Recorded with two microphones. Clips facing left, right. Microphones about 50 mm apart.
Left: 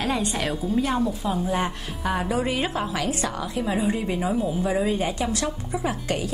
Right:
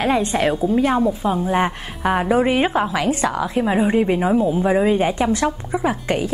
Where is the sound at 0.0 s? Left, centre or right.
Right.